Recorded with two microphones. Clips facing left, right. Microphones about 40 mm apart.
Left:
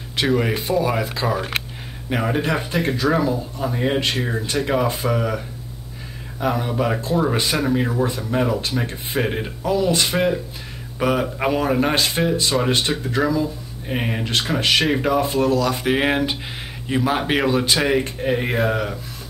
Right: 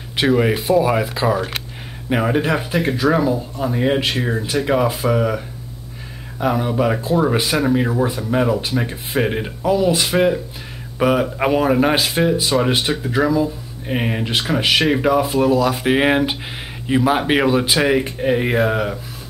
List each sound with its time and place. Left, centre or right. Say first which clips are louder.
0.2 s speech: right 4 dB; centre
6.4 s speech: right 3 dB; centre